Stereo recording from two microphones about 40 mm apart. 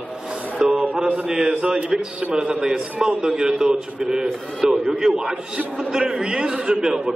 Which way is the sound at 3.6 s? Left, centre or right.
Centre.